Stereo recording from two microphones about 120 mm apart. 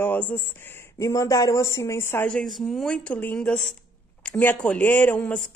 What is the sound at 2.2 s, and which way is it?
Speech, 5° left (ahead or behind).